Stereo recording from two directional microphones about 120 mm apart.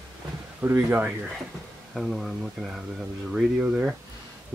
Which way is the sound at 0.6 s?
15° right (ahead or behind).